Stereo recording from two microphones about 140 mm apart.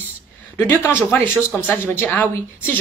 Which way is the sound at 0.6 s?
15° left (ahead or behind).